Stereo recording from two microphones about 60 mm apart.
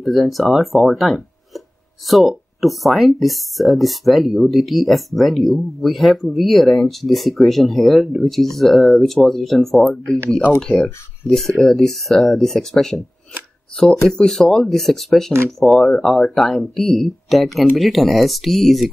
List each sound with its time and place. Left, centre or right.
0.0 s speech: centre
14.0 s speech: centre